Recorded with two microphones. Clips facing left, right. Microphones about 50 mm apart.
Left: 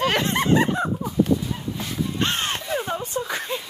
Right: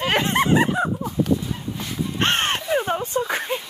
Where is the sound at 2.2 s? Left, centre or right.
Right.